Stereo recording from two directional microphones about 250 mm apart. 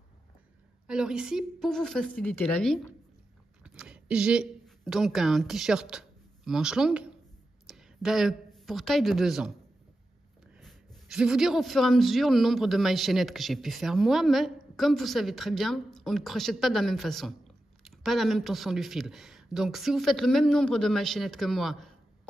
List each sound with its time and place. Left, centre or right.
0.8 s a man's voice: centre
10.6 s a man's voice: centre